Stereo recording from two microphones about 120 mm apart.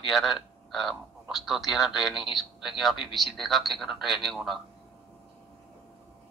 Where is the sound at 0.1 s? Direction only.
5° left (ahead or behind).